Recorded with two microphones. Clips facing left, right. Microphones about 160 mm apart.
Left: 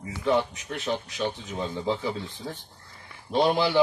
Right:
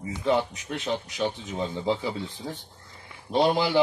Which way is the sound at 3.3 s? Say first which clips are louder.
Even; 10° right (ahead or behind).